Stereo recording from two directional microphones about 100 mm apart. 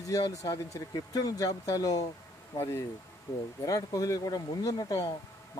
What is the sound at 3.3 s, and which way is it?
Speech, 35° left (ahead or behind).